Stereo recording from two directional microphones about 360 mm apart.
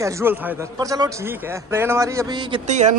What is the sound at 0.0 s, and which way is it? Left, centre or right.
A woman's voice, centre.